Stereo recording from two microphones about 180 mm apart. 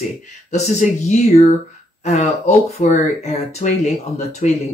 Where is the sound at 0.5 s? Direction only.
40° left (ahead or behind).